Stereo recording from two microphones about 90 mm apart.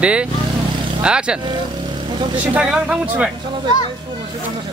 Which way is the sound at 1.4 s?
60° right (ahead or behind).